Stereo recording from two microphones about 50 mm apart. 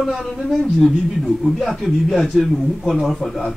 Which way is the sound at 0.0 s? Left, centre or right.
Centre.